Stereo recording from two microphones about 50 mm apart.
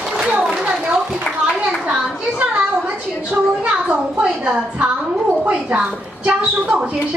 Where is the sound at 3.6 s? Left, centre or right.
Right.